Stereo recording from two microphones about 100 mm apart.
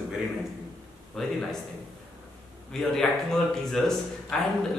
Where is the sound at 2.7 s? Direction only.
5° left (ahead or behind).